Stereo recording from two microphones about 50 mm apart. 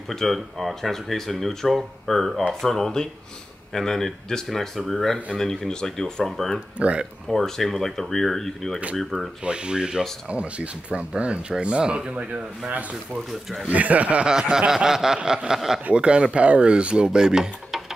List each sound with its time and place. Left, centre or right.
0.1 s speech: centre
6.8 s speech: right
7.2 s speech: centre
9.4 s speech: centre
14.5 s a sound: centre
15.9 s speech: right
17.6 s a sound: centre